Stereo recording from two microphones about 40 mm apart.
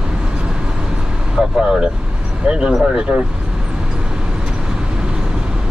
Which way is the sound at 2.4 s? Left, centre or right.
Right.